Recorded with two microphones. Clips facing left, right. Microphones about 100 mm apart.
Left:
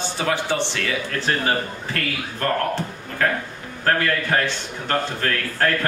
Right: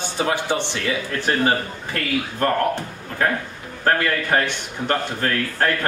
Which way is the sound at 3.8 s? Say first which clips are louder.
Right 1 dB; 25° right (ahead or behind).